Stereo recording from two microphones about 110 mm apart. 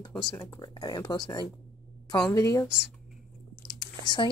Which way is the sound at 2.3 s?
30° left (ahead or behind).